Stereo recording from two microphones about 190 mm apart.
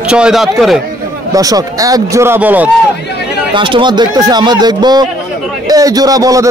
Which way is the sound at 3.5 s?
25° right (ahead or behind).